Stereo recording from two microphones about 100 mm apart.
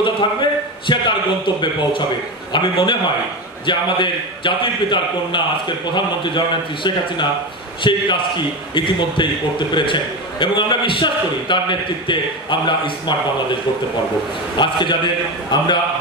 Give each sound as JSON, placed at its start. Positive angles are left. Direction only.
{"t": 0.0, "sound": "a sound", "side_deg": 50}
{"t": 2.5, "sound": "a man's voice", "side_deg": 55}
{"t": 14.6, "sound": "a man's voice", "side_deg": 50}